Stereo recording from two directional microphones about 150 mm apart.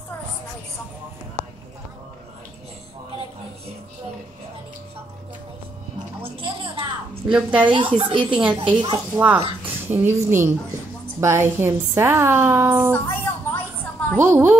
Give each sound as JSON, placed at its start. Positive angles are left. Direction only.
{"t": 6.2, "sound": "music", "side_deg": -35}
{"t": 7.2, "sound": "a woman's voice", "side_deg": -10}
{"t": 7.6, "sound": "a woman's voice", "side_deg": -35}
{"t": 8.2, "sound": "a woman's voice", "side_deg": -5}
{"t": 12.9, "sound": "a sound", "side_deg": 15}
{"t": 14.1, "sound": "a woman's voice", "side_deg": -15}